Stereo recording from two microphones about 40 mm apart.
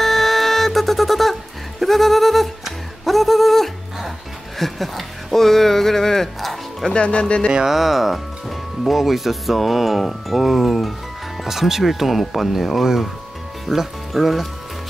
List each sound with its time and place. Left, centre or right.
0.0 s music: centre
4.6 s a sound: centre
6.9 s speech: left
7.5 s speech: centre